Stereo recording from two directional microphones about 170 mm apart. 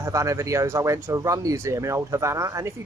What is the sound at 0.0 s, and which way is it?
Speech, 20° right (ahead or behind).